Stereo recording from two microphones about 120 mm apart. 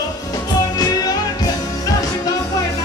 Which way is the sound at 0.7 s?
30° left (ahead or behind).